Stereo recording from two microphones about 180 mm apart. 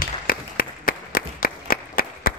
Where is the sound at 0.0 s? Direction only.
55° left (ahead or behind).